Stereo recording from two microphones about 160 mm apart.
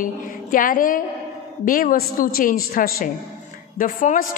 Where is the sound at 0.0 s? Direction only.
60° left (ahead or behind).